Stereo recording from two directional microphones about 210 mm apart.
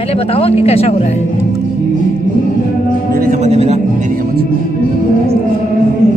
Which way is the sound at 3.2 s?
35° right (ahead or behind).